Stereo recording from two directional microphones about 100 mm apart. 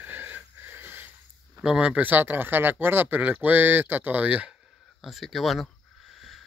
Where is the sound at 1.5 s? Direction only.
10° right (ahead or behind).